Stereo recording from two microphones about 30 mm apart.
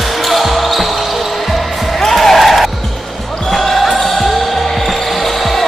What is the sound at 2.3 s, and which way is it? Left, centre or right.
Music, centre.